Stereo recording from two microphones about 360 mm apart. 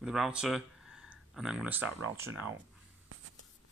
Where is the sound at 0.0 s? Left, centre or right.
Centre.